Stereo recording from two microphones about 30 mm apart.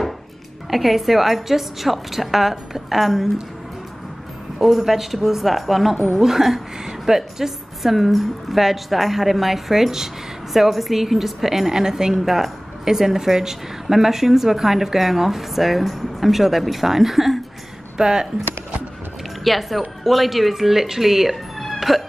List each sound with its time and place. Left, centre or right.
0.7 s a woman's voice: centre
4.6 s a woman's voice: centre
12.1 s a woman's voice: centre
17.9 s a woman's voice: right
19.4 s a woman's voice: centre
21.7 s hiccup: centre